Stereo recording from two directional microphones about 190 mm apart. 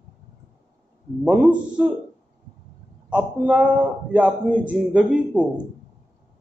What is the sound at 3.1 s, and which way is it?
A man's voice, 5° right (ahead or behind).